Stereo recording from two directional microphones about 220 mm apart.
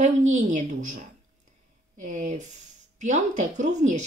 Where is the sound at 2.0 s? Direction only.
35° right (ahead or behind).